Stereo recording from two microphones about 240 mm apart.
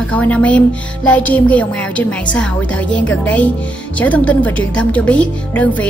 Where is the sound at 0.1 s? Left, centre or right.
Centre.